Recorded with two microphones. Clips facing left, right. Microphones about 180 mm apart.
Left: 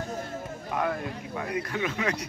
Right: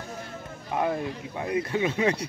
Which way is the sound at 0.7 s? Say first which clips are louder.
Right 3 dB; 25° right (ahead or behind).